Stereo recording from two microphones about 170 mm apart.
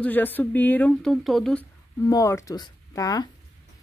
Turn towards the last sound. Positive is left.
turn(degrees=20)  # may be behind; listen again after turning